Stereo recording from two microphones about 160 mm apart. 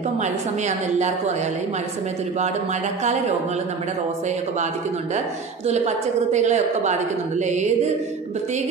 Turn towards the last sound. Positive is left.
turn(degrees=-50)  # may be behind; listen again after turning